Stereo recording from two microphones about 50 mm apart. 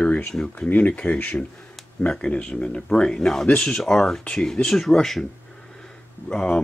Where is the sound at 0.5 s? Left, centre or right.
Left; by 4.2 s centre.